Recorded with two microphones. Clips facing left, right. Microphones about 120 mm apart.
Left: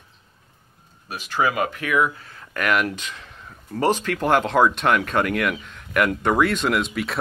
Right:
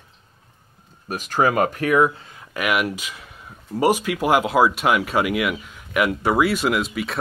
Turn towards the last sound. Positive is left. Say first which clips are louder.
# right 1 dB
turn(degrees=0)  # may be behind; listen again after turning